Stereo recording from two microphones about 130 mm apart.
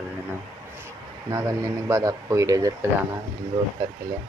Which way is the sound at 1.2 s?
25° right (ahead or behind).